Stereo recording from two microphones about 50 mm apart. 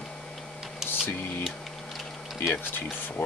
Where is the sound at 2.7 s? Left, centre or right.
Left.